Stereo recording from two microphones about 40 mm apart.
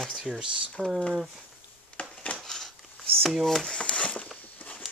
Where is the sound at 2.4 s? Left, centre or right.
Centre.